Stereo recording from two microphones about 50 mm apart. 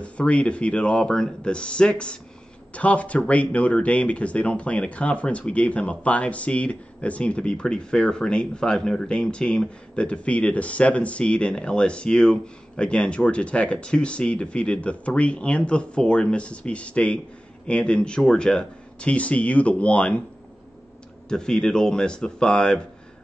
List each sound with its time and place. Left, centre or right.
0.0 s speech: left
21.3 s speech: centre